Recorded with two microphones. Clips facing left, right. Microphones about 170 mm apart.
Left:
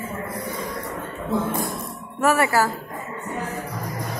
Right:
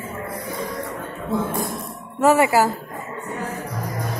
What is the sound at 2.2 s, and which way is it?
Music, 20° right (ahead or behind).